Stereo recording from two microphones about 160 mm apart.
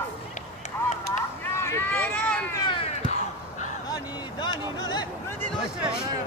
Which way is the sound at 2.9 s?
45° left (ahead or behind).